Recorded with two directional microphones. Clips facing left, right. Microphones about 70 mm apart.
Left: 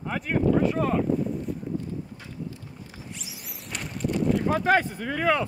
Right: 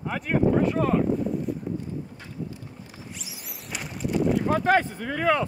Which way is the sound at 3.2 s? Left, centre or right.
Centre.